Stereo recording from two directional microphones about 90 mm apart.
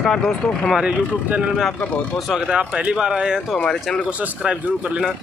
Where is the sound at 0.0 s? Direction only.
5° left (ahead or behind).